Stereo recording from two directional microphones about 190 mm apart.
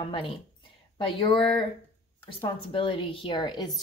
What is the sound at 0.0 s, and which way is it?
Speech, 30° left (ahead or behind).